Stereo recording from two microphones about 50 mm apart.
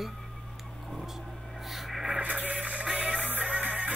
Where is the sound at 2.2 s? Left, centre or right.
Right.